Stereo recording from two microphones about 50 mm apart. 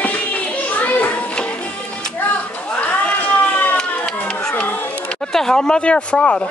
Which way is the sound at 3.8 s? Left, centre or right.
Left.